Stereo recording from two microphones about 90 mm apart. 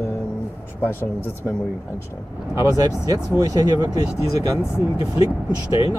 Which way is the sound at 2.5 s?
40° right (ahead or behind).